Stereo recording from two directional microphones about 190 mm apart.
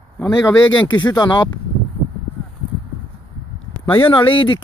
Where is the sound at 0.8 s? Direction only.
20° left (ahead or behind).